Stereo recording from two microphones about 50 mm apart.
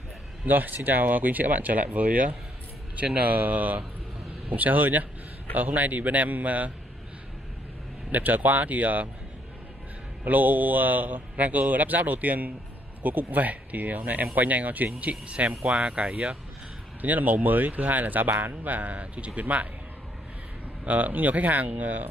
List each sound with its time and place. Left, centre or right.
0.5 s a man's voice: right
8.1 s a man's voice: right
10.2 s a man's voice: right
17.0 s a man's voice: right
20.8 s a man's voice: right